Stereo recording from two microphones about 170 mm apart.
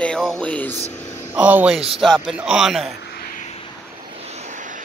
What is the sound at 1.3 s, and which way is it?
Speech, 10° right (ahead or behind).